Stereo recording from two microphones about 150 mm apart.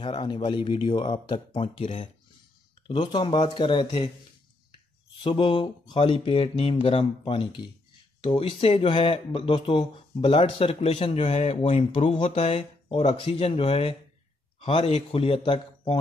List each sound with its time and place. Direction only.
0.0 s speech: 35° left (ahead or behind)
2.9 s speech: 35° left (ahead or behind)
5.2 s speech: 35° left (ahead or behind)